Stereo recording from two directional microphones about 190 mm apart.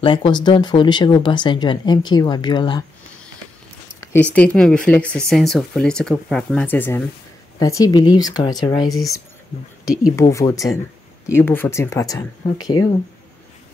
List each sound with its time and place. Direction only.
0.0 s speech: 25° left (ahead or behind)
4.0 s speech: 10° left (ahead or behind)
10.3 s speech: 15° left (ahead or behind)